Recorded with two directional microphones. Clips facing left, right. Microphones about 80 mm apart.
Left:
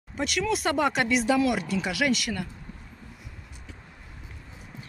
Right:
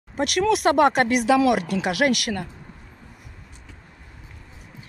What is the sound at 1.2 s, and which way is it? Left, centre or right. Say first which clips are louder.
Speech: right 5 dB; right.